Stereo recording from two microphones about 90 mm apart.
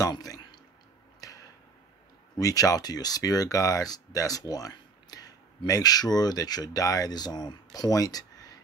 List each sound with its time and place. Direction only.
0.1 s speech: 50° left (ahead or behind)
1.2 s arrow: 40° left (ahead or behind)
2.3 s speech: 40° left (ahead or behind)